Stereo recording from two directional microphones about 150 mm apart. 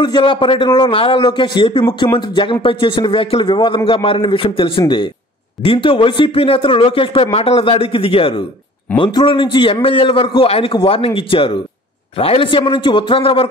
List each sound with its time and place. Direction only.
0.0 s a man's voice: 30° left (ahead or behind)